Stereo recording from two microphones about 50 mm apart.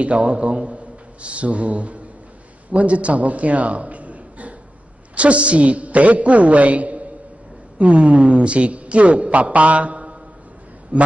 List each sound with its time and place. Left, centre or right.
0.0 s a woman's voice: right